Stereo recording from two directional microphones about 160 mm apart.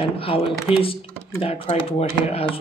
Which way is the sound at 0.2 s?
35° left (ahead or behind).